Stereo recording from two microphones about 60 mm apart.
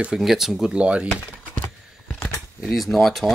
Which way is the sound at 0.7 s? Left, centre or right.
Centre.